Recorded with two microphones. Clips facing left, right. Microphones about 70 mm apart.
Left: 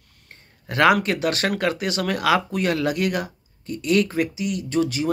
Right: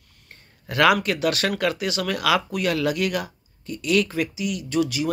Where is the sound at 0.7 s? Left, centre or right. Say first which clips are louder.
Left 1 dB; left.